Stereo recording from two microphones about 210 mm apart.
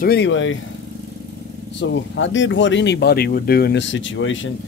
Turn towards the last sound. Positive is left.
turn(degrees=65)  # may be behind; listen again after turning